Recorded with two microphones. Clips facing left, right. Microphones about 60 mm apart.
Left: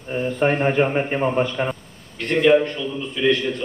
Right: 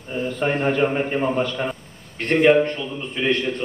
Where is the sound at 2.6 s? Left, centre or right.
Right.